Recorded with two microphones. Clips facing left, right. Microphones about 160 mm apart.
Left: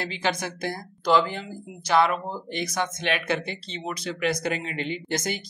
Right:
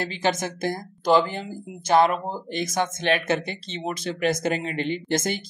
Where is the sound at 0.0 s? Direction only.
45° right (ahead or behind).